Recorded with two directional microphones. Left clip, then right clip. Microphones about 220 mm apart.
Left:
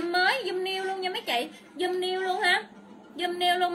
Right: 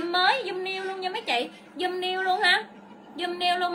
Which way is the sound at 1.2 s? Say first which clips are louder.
Right 2 dB; 20° right (ahead or behind).